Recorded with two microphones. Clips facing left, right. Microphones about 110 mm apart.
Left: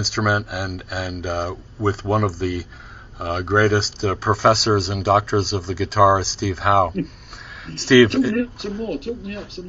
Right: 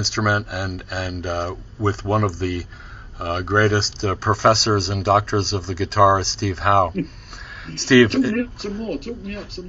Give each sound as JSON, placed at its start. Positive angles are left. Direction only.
{"t": 0.0, "sound": "speech", "side_deg": 0}
{"t": 8.4, "sound": "speech", "side_deg": 25}